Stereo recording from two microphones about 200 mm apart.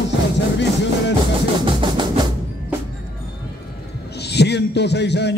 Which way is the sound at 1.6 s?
25° right (ahead or behind).